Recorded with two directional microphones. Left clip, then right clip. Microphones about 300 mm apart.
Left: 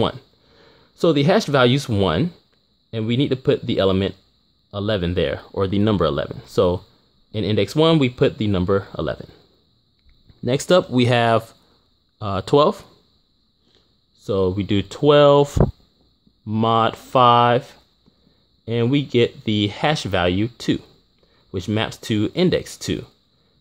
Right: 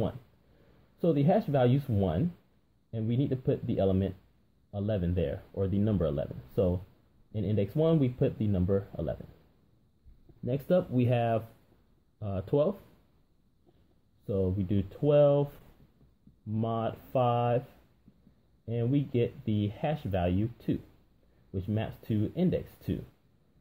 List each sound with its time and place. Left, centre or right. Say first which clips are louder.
0.9 s speech: left 10 dB; left
10.4 s speech: left 12 dB; left
14.7 s speech: left 11 dB; left
16.4 s speech: left 15 dB; left
18.7 s speech: left 12 dB; left